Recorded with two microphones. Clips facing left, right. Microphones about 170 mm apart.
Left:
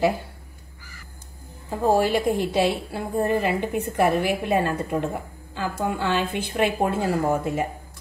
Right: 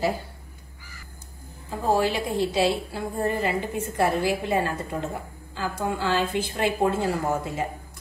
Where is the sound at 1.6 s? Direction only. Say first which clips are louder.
Left 3 dB; 50° left (ahead or behind).